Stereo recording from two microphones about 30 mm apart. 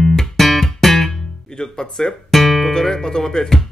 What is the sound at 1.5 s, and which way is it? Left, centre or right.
Speech, left.